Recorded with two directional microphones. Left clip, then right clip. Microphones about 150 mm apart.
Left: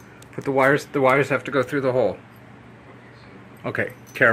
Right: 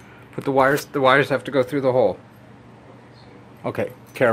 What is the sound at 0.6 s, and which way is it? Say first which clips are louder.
Speech: left 1 dB; 20° left (ahead or behind).